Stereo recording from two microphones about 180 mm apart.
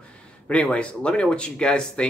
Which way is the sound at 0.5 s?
5° left (ahead or behind).